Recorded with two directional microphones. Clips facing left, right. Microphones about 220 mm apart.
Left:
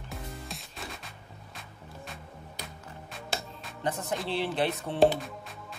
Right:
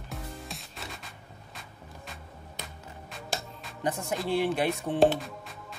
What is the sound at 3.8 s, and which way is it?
Music, 10° right (ahead or behind).